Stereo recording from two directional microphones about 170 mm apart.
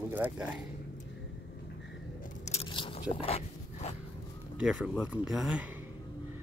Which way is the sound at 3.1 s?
35° left (ahead or behind).